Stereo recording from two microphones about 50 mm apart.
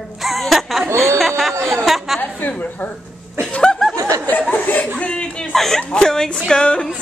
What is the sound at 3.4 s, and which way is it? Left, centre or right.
Chuckle, centre.